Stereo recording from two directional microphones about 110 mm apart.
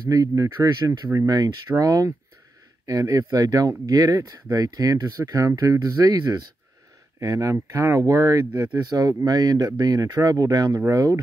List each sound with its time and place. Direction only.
0.1 s speech: 35° right (ahead or behind)